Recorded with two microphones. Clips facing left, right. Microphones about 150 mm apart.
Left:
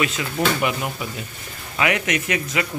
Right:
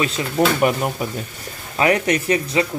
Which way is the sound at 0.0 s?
40° right (ahead or behind).